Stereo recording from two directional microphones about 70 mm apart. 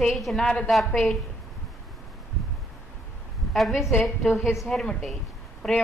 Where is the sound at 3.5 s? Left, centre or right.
Centre.